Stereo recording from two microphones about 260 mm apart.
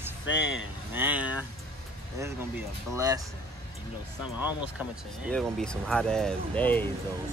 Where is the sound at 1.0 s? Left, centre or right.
Centre.